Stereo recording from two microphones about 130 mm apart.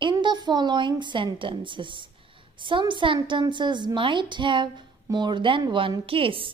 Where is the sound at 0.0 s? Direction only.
35° right (ahead or behind).